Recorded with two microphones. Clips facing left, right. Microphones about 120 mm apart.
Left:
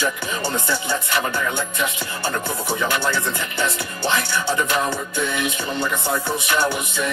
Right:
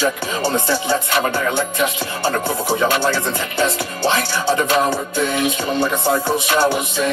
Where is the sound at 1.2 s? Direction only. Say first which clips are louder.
Right 4 dB; 50° right (ahead or behind).